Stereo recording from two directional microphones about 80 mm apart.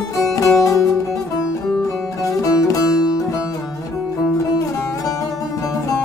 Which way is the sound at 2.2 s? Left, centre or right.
Left.